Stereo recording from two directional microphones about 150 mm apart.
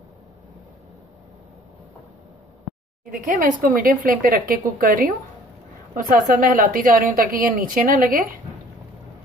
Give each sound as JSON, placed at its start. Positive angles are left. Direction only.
{"t": 3.1, "sound": "a woman's voice", "side_deg": -60}